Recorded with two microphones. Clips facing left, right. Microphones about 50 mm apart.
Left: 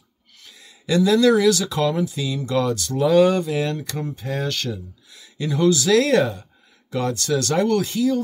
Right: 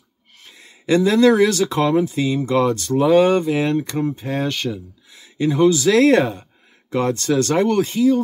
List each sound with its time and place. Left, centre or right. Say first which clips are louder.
0.4 s speech: right 2 dB; right